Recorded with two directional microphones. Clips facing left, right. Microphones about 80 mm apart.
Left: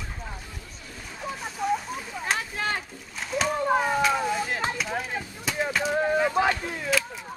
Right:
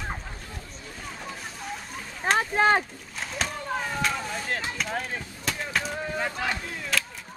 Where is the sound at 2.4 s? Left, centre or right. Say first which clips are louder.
Right 8 dB; right.